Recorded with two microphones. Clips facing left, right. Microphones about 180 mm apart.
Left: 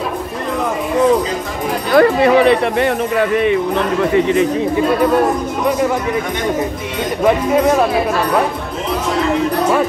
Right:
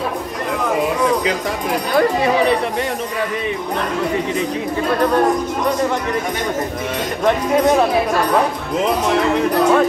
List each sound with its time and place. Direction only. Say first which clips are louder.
2.0 s speech: left 6 dB; 65° left (ahead or behind)